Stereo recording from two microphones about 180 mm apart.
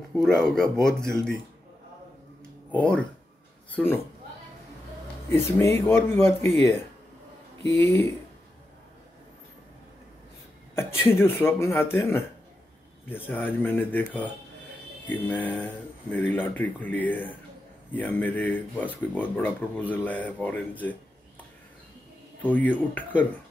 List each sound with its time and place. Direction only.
0.1 s speech: centre (ahead or behind)
2.8 s speech: 5° left (ahead or behind)
5.3 s speech: 15° left (ahead or behind)
7.8 s speech: 15° left (ahead or behind)
10.7 s speech: 15° left (ahead or behind)
13.1 s speech: 10° left (ahead or behind)
22.4 s speech: 10° left (ahead or behind)